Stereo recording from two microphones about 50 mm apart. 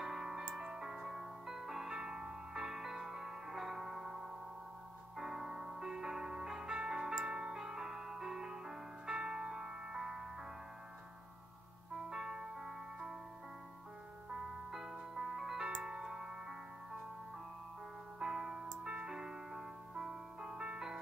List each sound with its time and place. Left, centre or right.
0.0 s music: centre
12.1 s music: centre
14.3 s music: centre
18.2 s music: centre